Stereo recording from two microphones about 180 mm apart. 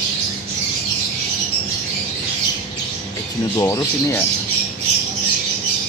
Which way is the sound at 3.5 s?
15° left (ahead or behind).